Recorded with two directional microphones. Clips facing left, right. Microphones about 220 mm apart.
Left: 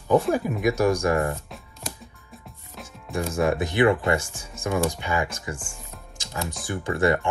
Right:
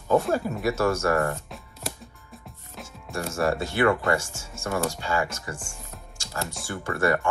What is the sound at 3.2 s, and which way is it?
Speech, 15° left (ahead or behind).